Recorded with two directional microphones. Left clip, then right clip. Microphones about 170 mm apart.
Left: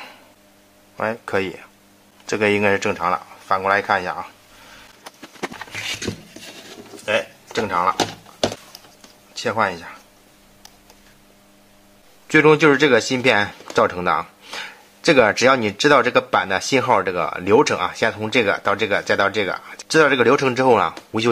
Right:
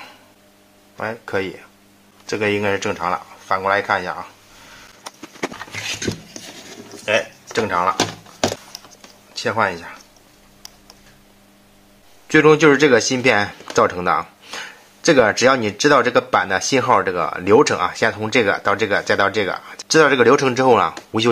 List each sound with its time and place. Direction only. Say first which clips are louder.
0.9 s speech: left 1 dB; 25° left (ahead or behind)
5.7 s a sound: even; centre (ahead or behind)
7.1 s speech: right 2 dB; 10° left (ahead or behind)
9.3 s speech: right 1 dB; 10° left (ahead or behind)
12.3 s speech: right 1 dB; 10° left (ahead or behind)